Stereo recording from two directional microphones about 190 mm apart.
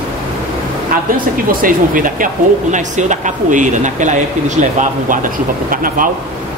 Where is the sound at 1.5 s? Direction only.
45° right (ahead or behind).